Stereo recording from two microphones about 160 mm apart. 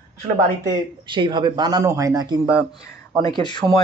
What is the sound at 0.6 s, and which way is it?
Speech, 30° right (ahead or behind).